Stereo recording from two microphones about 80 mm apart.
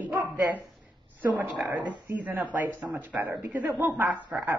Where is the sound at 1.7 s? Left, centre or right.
Centre.